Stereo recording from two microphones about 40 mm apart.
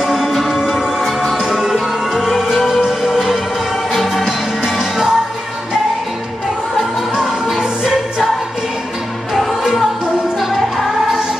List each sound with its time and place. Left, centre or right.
0.0 s music: centre
6.8 s music: centre
9.3 s music: centre